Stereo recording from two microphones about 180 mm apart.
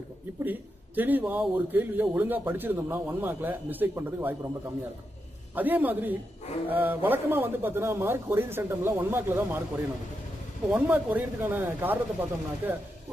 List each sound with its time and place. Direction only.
0.4 s a man's voice: 10° right (ahead or behind)
5.5 s a man's voice: 10° right (ahead or behind)
10.7 s a man's voice: 10° right (ahead or behind)